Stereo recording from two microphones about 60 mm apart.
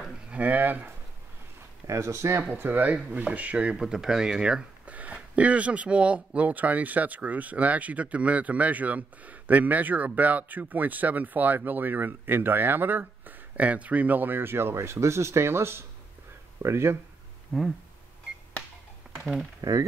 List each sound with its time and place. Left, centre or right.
0.3 s speech: right
1.9 s speech: right
2.5 s speech: right
3.7 s speech: centre
4.8 s speech: right
17.5 s speech: centre
19.1 s a sound: centre
19.6 s speech: right